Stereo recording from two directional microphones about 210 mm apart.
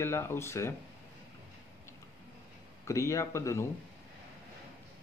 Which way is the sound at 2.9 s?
15° left (ahead or behind).